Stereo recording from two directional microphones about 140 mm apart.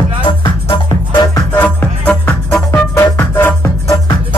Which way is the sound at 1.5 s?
10° left (ahead or behind).